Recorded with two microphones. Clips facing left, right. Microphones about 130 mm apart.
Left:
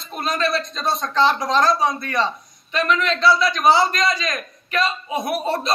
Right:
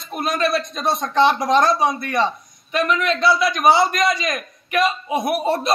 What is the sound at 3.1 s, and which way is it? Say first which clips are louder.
Speech: left 1 dB; 55° right (ahead or behind).